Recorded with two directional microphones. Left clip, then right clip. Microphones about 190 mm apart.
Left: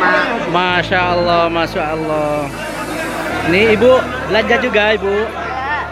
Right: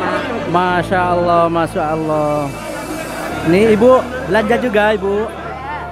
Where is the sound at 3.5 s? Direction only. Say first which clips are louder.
Even; 15° right (ahead or behind).